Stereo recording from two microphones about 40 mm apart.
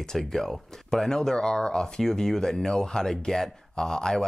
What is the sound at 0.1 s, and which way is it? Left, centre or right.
Speech, centre.